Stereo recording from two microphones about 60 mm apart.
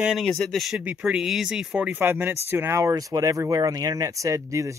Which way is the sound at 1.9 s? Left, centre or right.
Right.